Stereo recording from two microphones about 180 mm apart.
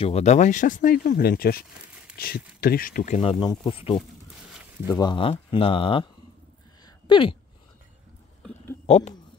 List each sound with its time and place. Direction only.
0.0 s speech: 35° left (ahead or behind)
7.1 s speech: 30° left (ahead or behind)
8.8 s speech: 40° left (ahead or behind)